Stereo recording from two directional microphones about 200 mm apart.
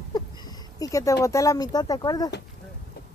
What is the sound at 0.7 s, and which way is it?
Speech, 15° left (ahead or behind).